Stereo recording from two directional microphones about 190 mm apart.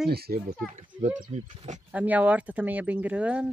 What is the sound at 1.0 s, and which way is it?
Speech, 40° right (ahead or behind).